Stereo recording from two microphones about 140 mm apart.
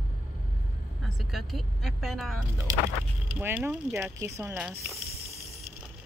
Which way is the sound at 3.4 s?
15° right (ahead or behind).